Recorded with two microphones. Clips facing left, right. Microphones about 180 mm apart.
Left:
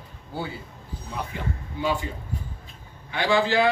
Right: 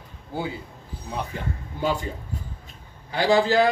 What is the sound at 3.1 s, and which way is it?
Speech, 40° right (ahead or behind).